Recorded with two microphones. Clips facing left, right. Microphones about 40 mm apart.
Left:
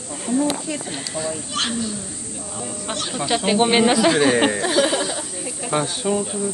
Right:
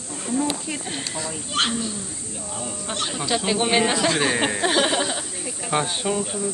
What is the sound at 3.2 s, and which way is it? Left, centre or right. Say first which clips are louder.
Speech: left 5 dB; centre.